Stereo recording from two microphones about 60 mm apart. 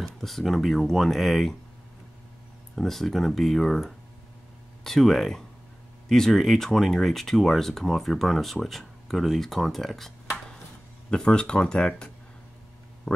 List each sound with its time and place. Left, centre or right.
0.0 s speech: centre
2.7 s speech: centre
11.1 s speech: centre